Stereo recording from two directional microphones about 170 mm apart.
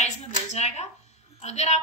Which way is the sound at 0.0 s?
40° left (ahead or behind).